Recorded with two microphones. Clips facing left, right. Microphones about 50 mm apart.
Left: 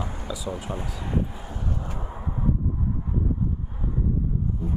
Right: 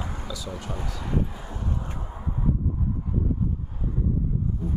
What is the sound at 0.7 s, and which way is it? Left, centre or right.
Speech, left.